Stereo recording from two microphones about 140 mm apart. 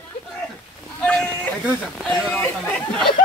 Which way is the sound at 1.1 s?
10° left (ahead or behind).